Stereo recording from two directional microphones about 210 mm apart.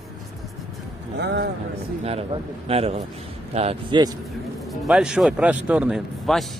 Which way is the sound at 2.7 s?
30° right (ahead or behind).